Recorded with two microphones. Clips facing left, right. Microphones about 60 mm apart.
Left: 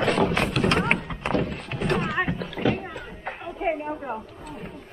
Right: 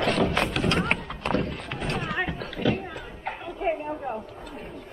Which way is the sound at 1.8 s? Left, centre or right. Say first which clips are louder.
Left 6 dB; left.